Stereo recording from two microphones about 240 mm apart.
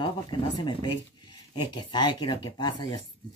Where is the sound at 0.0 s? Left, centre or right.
Centre.